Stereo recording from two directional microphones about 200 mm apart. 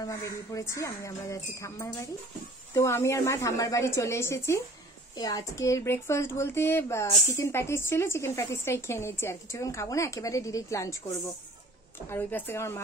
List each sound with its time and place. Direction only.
0.0 s speech: 15° left (ahead or behind)